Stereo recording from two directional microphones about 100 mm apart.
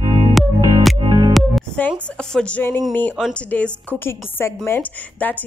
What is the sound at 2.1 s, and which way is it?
A woman's voice, 10° left (ahead or behind).